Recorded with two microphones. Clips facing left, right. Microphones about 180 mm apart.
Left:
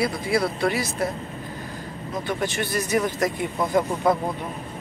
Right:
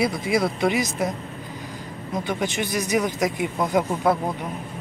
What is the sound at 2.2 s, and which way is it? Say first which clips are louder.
Speech: even; 15° right (ahead or behind).